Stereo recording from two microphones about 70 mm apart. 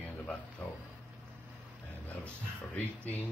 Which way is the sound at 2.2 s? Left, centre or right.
Left.